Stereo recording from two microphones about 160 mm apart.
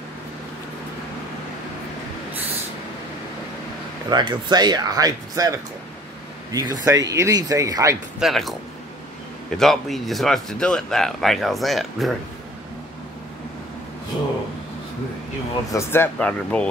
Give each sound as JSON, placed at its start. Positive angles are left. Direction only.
{"t": 4.1, "sound": "speech", "side_deg": -25}
{"t": 6.5, "sound": "speech", "side_deg": -25}
{"t": 8.2, "sound": "speech", "side_deg": 0}
{"t": 9.6, "sound": "speech", "side_deg": 0}
{"t": 15.7, "sound": "speech", "side_deg": 15}